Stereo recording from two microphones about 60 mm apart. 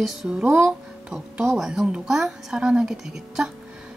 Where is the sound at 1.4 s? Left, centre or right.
Centre.